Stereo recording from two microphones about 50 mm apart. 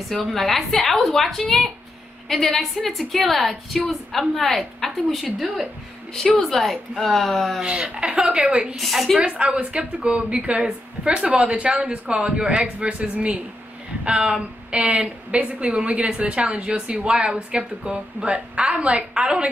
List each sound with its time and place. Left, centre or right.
0.2 s a woman's voice: centre
7.6 s a woman's voice: centre
8.7 s a woman's voice: centre
9.2 s a woman's voice: right